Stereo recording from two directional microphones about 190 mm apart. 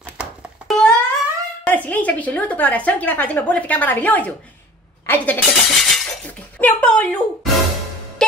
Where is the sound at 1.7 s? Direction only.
10° left (ahead or behind).